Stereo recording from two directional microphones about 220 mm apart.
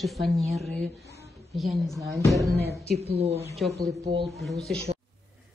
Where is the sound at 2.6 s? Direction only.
45° right (ahead or behind).